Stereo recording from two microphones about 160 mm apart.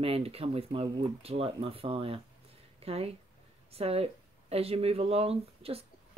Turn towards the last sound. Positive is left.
turn(degrees=-40)  # may be behind; listen again after turning